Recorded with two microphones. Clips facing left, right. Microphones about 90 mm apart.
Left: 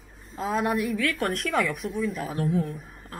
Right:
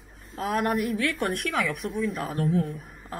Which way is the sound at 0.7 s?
5° right (ahead or behind).